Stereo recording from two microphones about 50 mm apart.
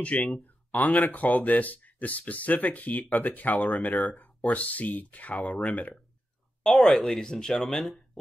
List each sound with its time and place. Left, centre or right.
0.0 s speech: left
6.6 s speech: centre